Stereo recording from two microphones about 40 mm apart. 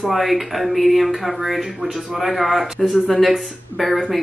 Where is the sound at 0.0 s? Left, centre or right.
Centre.